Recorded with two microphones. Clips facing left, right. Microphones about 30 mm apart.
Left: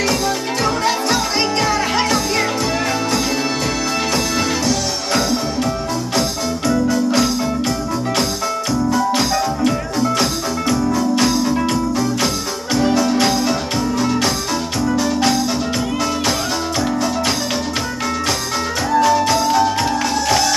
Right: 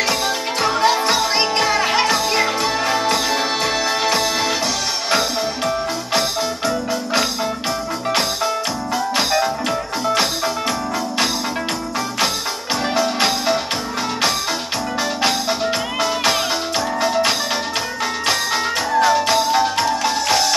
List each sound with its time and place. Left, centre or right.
0.0 s music: right
4.1 s music: right
6.9 s music: right
8.9 s music: right
12.7 s music: right
15.0 s music: right
18.9 s music: right